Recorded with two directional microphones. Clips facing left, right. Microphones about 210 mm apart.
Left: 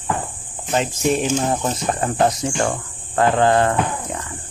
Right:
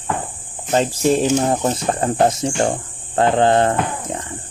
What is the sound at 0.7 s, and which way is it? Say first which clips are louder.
Speech: right 3 dB; 35° right (ahead or behind).